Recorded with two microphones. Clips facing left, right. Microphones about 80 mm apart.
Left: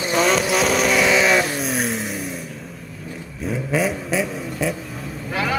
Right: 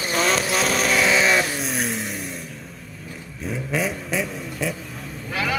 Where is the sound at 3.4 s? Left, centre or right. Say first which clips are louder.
Left 4 dB; centre.